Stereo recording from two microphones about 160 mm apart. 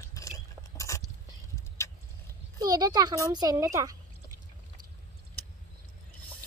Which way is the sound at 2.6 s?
25° right (ahead or behind).